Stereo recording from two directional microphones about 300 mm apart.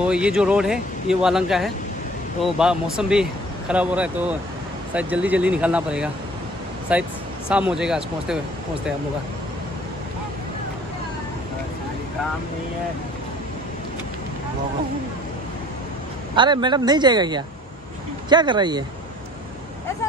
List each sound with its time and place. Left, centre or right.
0.0 s speech: centre
16.3 s speech: centre